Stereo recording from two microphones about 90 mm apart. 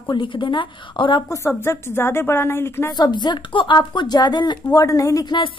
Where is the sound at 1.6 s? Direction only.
25° left (ahead or behind).